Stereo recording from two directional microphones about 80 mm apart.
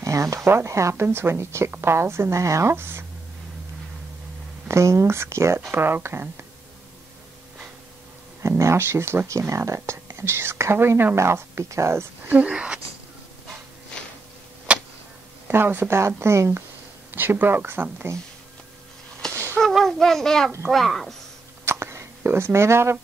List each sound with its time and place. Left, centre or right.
0.0 s speech: right
4.6 s speech: right
8.4 s speech: right
12.4 s speech: centre
14.7 s tick-tock: centre
15.4 s speech: right
19.2 s a sound: centre
20.7 s speech: centre
21.6 s a sound: right